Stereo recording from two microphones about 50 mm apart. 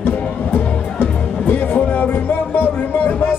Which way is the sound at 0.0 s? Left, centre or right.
Left.